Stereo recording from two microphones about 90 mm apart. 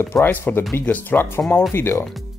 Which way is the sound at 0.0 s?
25° left (ahead or behind).